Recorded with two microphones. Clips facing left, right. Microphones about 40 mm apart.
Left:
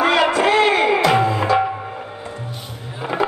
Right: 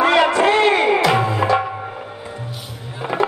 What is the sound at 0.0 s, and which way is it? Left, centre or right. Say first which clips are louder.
Music: right 1 dB; centre.